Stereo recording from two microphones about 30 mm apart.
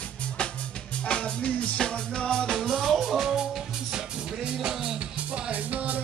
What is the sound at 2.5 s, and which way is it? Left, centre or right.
Music, centre.